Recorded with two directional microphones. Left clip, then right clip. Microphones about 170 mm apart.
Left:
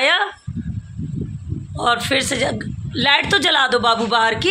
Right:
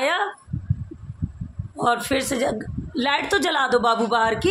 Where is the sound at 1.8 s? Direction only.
Centre (ahead or behind).